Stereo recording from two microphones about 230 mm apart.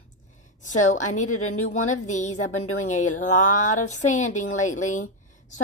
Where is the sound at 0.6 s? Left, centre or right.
Left.